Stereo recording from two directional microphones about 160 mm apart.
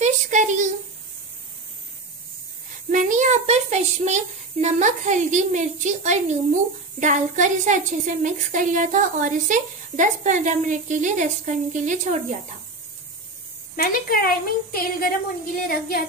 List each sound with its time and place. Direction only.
0.0 s a sound: 50° right (ahead or behind)
2.9 s a woman's voice: 55° right (ahead or behind)
13.7 s a woman's voice: 65° left (ahead or behind)